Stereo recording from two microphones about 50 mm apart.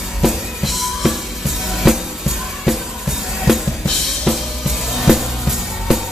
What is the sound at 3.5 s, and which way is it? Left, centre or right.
Drum kit, centre.